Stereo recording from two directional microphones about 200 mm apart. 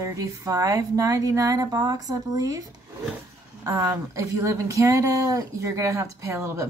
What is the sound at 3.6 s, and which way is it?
Speech, 15° right (ahead or behind).